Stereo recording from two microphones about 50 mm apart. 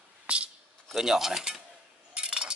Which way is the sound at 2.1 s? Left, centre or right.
Centre.